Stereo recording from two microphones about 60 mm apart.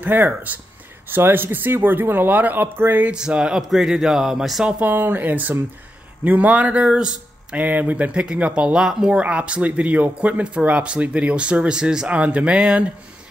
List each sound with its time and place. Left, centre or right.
0.0 s speech: right
3.1 s speech: centre
4.6 s speech: right
4.9 s speech: right; by 12.9 s centre